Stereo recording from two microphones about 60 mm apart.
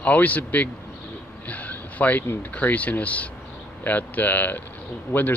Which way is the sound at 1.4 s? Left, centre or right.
Left.